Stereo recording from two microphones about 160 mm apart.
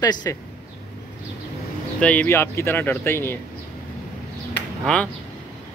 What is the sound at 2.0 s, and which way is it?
Speech, 10° left (ahead or behind).